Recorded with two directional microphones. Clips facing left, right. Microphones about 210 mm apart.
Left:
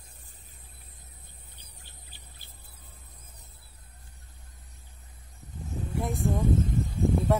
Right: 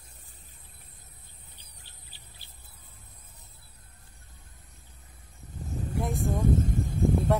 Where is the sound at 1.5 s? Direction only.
50° left (ahead or behind).